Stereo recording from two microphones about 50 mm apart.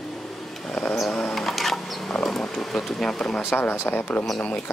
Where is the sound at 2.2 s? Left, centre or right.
Centre.